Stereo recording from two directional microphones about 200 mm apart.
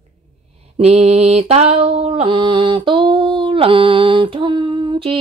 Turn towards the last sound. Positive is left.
turn(degrees=-25)  # may be behind; listen again after turning